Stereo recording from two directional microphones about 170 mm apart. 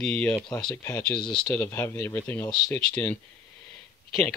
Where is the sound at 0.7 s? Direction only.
10° left (ahead or behind).